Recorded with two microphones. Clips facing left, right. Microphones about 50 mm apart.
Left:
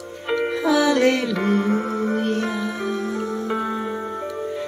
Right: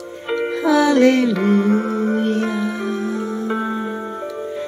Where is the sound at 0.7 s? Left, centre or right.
Right.